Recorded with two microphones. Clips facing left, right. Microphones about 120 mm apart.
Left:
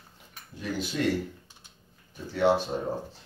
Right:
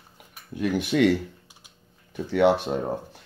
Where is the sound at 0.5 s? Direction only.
65° right (ahead or behind).